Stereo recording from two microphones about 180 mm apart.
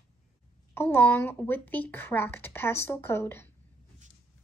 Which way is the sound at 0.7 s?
10° left (ahead or behind).